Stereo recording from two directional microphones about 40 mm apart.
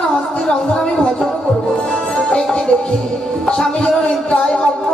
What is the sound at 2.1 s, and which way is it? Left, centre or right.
Music, left.